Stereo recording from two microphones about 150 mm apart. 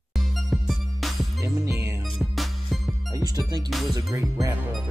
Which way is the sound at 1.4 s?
20° right (ahead or behind).